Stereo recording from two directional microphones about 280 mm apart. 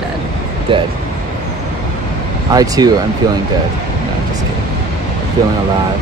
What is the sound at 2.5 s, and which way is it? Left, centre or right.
Speech, centre.